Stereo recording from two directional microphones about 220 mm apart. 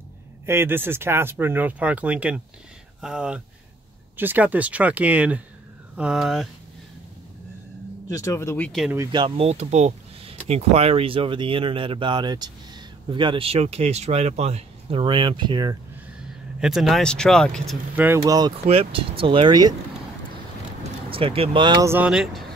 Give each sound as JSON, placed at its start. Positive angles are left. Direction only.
{"t": 0.5, "sound": "speech", "side_deg": -10}
{"t": 8.1, "sound": "speech", "side_deg": 15}
{"t": 8.9, "sound": "speech", "side_deg": -15}
{"t": 16.5, "sound": "speech", "side_deg": 0}
{"t": 17.6, "sound": "speech", "side_deg": -10}
{"t": 21.1, "sound": "speech", "side_deg": -25}